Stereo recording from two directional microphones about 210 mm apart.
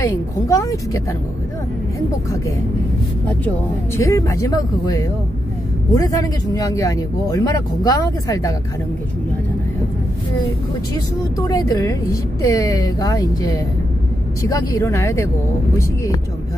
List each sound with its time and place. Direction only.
0.0 s a man's voice: 15° left (ahead or behind)
3.3 s a man's voice: 10° left (ahead or behind)
11.3 s a man's voice: 15° left (ahead or behind)